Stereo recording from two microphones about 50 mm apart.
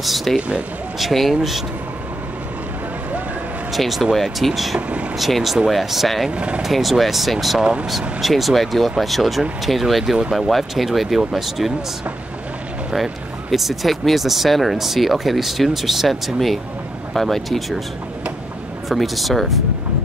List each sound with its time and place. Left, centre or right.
0.0 s speech: centre
3.7 s speech: centre
4.7 s speech: right
5.1 s speech: centre
6.3 s speech: right
6.6 s speech: centre
12.9 s speech: centre
18.9 s speech: centre